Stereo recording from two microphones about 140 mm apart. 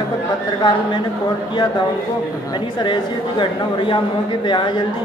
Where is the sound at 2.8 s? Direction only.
35° left (ahead or behind).